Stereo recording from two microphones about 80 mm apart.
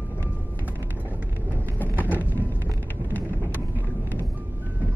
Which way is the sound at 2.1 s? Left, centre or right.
Left.